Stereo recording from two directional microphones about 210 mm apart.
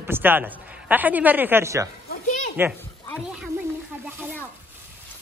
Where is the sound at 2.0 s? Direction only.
35° left (ahead or behind).